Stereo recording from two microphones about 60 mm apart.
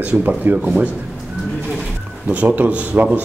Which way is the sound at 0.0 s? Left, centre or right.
Right.